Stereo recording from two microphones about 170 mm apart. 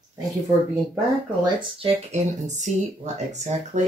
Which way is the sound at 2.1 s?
45° right (ahead or behind).